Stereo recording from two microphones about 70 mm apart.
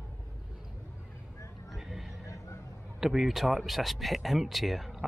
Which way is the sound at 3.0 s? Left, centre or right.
Centre.